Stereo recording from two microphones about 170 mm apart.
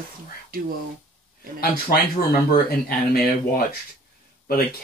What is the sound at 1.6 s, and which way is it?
Speech, 60° left (ahead or behind).